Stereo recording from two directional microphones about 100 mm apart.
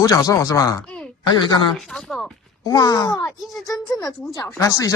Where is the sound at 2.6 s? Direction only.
40° left (ahead or behind).